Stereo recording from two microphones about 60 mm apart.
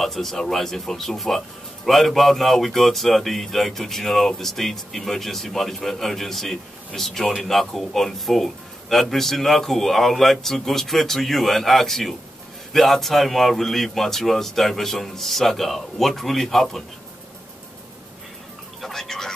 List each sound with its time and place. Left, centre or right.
0.0 s speech: centre
18.8 s whispering: centre